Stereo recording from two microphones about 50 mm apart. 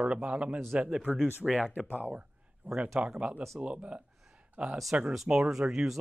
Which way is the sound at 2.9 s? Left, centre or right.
Centre.